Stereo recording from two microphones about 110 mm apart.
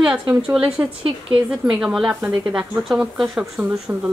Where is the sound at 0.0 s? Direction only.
15° right (ahead or behind).